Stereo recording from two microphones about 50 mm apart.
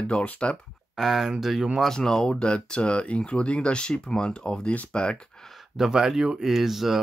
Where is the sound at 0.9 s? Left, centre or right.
Centre.